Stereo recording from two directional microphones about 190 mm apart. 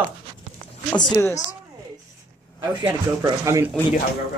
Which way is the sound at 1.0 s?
15° left (ahead or behind).